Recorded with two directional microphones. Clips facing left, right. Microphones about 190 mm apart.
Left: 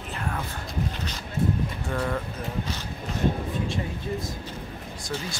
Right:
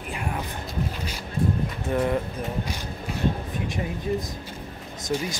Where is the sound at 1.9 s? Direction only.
20° right (ahead or behind).